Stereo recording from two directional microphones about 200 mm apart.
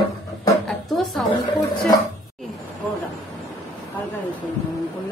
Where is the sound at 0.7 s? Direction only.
Centre (ahead or behind).